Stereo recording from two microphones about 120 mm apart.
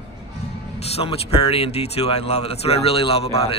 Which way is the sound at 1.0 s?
55° left (ahead or behind).